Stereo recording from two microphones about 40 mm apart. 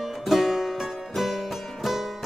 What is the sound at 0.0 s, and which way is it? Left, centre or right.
Music, centre.